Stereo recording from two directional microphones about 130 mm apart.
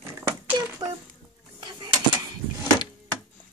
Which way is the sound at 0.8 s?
35° right (ahead or behind).